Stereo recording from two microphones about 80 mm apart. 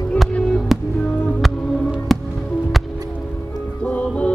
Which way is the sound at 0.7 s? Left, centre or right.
Centre.